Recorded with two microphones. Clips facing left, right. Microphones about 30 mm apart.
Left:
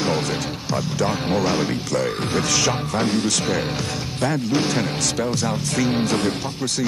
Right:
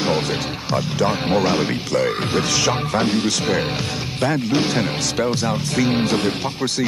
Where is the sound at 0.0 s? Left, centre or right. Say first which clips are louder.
Right 2 dB; centre.